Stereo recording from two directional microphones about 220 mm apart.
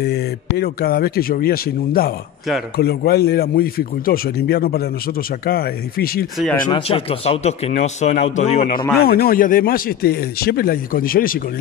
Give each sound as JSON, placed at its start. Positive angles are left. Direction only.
{"t": 0.0, "sound": "speech", "side_deg": 45}
{"t": 6.7, "sound": "speech", "side_deg": 25}
{"t": 9.0, "sound": "speech", "side_deg": 40}